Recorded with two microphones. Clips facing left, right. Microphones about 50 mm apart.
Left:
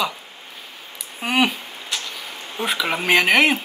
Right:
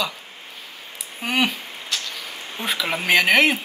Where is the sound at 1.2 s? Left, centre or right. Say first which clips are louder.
Left 2 dB; centre.